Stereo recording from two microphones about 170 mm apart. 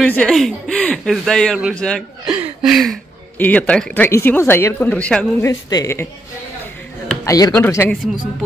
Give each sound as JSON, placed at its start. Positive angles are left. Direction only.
{"t": 0.0, "sound": "speech", "side_deg": 5}
{"t": 3.3, "sound": "speech", "side_deg": 10}
{"t": 5.4, "sound": "speech", "side_deg": 20}
{"t": 7.2, "sound": "speech", "side_deg": 20}